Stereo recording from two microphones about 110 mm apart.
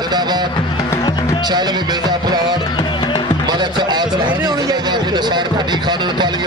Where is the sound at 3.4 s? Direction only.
40° right (ahead or behind).